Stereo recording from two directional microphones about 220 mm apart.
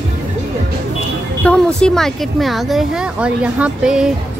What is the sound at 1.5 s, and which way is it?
A woman's voice, 5° left (ahead or behind).